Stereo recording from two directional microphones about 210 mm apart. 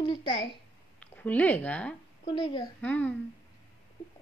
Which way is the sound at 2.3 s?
20° left (ahead or behind).